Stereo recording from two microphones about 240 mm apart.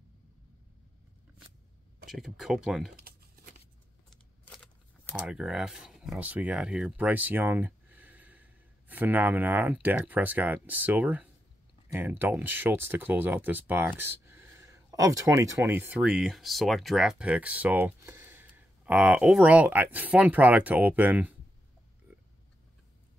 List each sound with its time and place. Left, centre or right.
2.0 s speech: centre
4.5 s speech: centre